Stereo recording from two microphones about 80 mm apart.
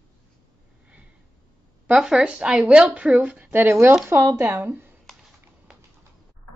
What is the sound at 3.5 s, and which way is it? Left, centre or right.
Speech, right.